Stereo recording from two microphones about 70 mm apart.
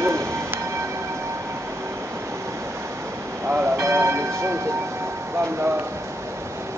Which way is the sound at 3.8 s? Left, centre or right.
Right.